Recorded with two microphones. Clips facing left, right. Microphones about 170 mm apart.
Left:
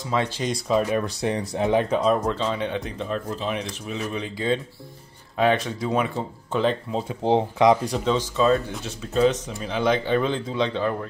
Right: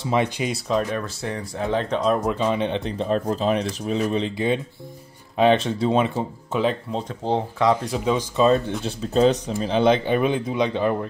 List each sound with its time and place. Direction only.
0.0 s speech: 20° right (ahead or behind)
0.7 s speech: 10° left (ahead or behind)
2.2 s speech: 15° right (ahead or behind)
6.1 s speech: 5° right (ahead or behind); by 7.8 s 15° left (ahead or behind)
7.8 s speech: centre (ahead or behind)
8.1 s speech: 20° right (ahead or behind)
8.8 s speech: 35° right (ahead or behind)